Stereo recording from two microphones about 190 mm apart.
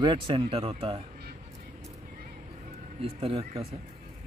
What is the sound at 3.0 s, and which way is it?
Speech, 30° right (ahead or behind).